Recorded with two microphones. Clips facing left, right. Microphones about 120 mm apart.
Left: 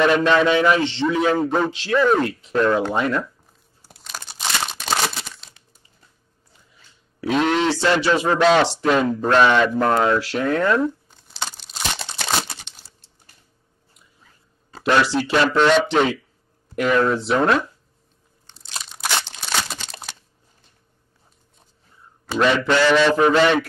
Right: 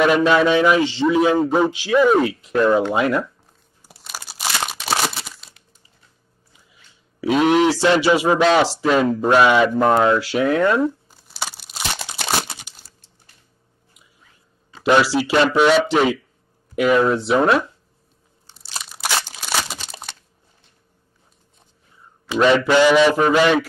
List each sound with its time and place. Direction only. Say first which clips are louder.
0.0 s a man's voice: right 1 dB; 10° right (ahead or behind)
3.8 s crumpling: even; 10° right (ahead or behind)
7.2 s a man's voice: right 4 dB; 5° right (ahead or behind)
10.1 s speech: right 2 dB; centre (ahead or behind)
10.8 s crumpling: right 2 dB; 5° right (ahead or behind)
14.9 s a man's voice: right 2 dB; 5° right (ahead or behind)
18.5 s crunch: right 1 dB; 5° right (ahead or behind)
22.8 s a man's voice: right 1 dB; 10° right (ahead or behind)